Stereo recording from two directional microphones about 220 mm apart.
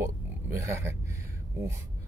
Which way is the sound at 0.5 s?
10° right (ahead or behind).